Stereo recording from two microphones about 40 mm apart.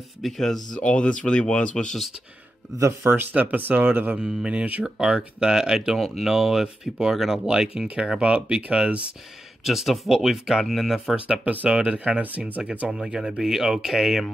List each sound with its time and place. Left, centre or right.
0.2 s speech: centre
0.7 s speech: left
3.0 s speech: right
3.3 s speech: right
4.2 s speech: centre
4.5 s speech: right
4.8 s speech: centre
5.9 s speech: centre
7.7 s speech: right
9.7 s speech: centre
11.6 s speech: right
12.9 s speech: centre